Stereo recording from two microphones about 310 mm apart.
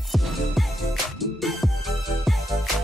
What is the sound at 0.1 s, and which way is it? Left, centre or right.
Music, centre.